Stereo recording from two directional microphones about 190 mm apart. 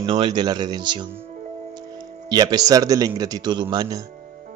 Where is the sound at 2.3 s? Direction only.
20° right (ahead or behind).